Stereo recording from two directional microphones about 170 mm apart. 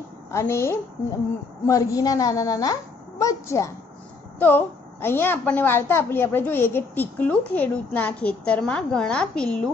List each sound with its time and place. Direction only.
0.3 s a woman's voice: 15° left (ahead or behind)